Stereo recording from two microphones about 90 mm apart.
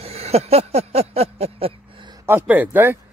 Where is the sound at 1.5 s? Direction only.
90° right.